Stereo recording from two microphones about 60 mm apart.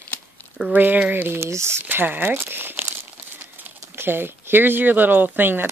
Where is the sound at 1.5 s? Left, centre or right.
Right.